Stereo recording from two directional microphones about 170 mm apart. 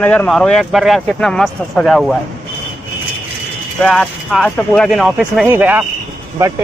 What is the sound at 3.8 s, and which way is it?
Speech, 5° left (ahead or behind).